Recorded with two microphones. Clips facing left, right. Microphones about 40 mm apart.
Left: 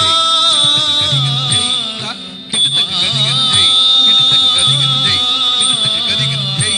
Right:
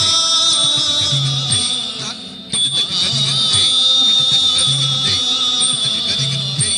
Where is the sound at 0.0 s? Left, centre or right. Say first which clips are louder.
Left 5 dB; left.